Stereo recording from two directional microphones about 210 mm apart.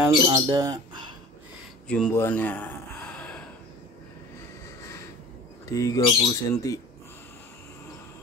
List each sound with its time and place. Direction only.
0.0 s speech: 15° right (ahead or behind)
1.9 s speech: 5° left (ahead or behind)
5.8 s speech: 15° left (ahead or behind)